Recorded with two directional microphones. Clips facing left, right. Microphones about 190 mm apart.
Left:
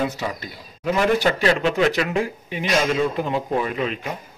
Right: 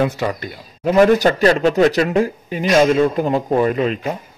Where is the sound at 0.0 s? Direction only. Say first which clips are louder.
Right 6 dB; 60° right (ahead or behind).